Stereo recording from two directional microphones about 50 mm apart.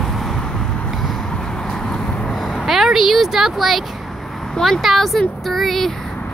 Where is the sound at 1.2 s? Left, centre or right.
Centre.